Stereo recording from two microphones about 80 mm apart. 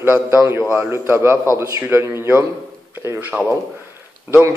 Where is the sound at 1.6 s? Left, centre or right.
Right.